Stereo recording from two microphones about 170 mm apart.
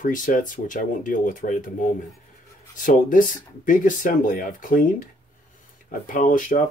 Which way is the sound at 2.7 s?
50° left (ahead or behind).